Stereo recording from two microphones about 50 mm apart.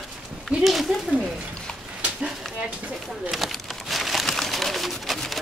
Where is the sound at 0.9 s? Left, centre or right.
Right.